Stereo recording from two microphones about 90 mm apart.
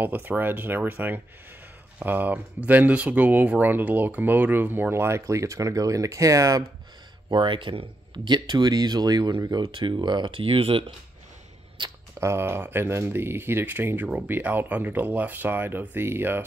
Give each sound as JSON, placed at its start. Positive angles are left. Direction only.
{"t": 0.0, "sound": "speech", "side_deg": -20}
{"t": 7.3, "sound": "speech", "side_deg": -65}
{"t": 9.7, "sound": "speech", "side_deg": -70}
{"t": 11.8, "sound": "speech", "side_deg": -65}
{"t": 12.2, "sound": "speech", "side_deg": -30}
{"t": 14.0, "sound": "speech", "side_deg": -10}
{"t": 14.3, "sound": "speech", "side_deg": -20}